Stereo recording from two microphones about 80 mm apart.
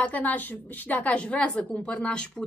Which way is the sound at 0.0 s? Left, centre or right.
Centre.